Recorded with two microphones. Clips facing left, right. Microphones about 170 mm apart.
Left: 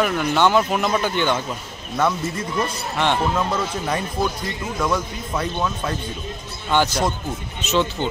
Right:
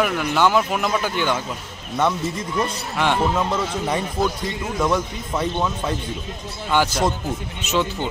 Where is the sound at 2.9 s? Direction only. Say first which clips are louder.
Even; 5° right (ahead or behind).